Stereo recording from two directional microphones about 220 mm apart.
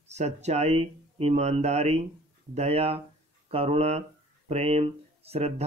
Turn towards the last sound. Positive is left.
turn(degrees=-25)  # may be behind; listen again after turning